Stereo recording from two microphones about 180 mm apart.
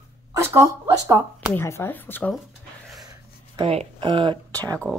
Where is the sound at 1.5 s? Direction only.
15° left (ahead or behind).